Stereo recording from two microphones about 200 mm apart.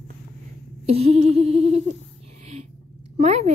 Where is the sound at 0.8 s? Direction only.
30° right (ahead or behind).